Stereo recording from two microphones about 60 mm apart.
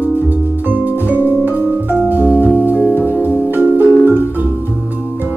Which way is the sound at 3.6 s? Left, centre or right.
Right.